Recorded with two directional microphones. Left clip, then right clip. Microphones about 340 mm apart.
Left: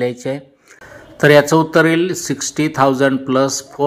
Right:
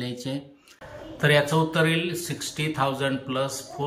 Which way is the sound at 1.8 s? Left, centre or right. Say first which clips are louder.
Left 10 dB; centre.